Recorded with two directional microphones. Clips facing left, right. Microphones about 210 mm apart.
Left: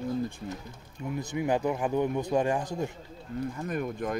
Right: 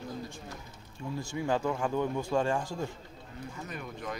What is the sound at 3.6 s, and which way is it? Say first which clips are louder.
Speech: left 6 dB; 50° left (ahead or behind).